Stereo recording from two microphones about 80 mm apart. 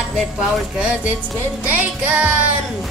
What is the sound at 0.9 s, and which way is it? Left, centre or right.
Music, centre.